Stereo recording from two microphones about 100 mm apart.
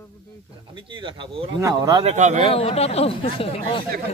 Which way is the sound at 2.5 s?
65° left (ahead or behind).